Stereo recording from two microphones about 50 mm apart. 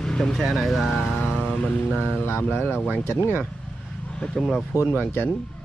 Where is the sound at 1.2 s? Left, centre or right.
Left.